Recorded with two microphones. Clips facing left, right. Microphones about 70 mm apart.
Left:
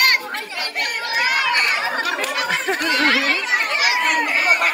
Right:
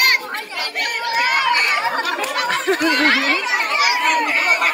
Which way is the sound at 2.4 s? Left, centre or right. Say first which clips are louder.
Right 5 dB; left.